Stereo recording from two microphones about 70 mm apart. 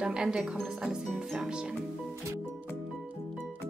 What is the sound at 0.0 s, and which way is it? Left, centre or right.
Speech, centre.